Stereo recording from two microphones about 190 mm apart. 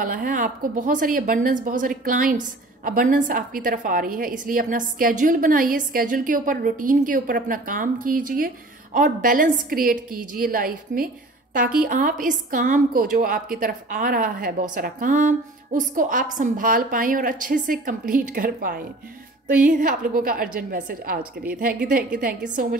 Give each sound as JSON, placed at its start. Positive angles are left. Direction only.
{"t": 0.0, "sound": "a woman's voice", "side_deg": -45}